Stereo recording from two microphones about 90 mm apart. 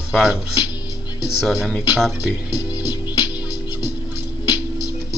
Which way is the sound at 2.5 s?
45° left (ahead or behind).